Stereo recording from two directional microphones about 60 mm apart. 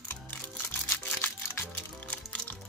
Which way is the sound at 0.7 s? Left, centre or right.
Left.